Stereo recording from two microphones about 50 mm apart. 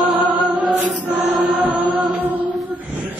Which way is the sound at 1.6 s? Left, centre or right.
Right.